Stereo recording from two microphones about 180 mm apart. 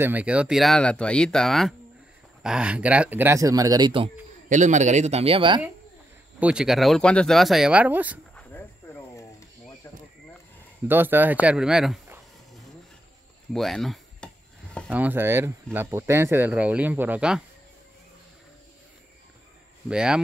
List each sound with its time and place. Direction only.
0.0 s speech: 10° right (ahead or behind); by 4.1 s 25° right (ahead or behind)
4.5 s speech: 40° right (ahead or behind)
6.4 s speech: 5° right (ahead or behind)
9.8 s a sound: 15° left (ahead or behind)
10.9 s speech: 10° right (ahead or behind)
13.5 s chopping: centre (ahead or behind)
14.9 s speech: 10° right (ahead or behind)
19.9 s speech: 5° right (ahead or behind)